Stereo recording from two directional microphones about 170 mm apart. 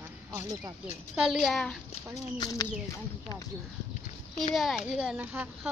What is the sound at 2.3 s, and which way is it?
Speech, 25° left (ahead or behind).